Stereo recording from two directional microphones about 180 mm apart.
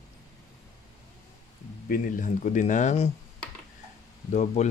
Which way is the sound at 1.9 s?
45° left (ahead or behind).